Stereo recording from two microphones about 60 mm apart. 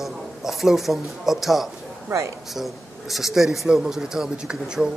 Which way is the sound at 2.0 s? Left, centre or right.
Right.